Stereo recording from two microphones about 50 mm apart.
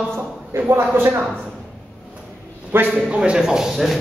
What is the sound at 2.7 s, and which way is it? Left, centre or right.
Speech, right.